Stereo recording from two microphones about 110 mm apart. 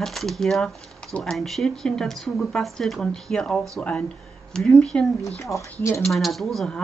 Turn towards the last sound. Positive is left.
turn(degrees=0)  # may be behind; listen again after turning